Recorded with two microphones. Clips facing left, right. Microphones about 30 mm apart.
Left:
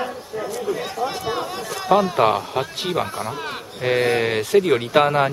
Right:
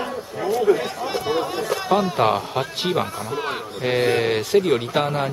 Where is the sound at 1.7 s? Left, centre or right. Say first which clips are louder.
Left 3 dB; centre.